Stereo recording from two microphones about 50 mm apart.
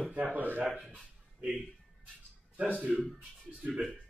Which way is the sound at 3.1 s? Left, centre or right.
Centre.